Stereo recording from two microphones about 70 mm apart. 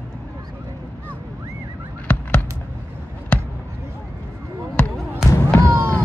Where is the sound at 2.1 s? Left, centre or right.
Left.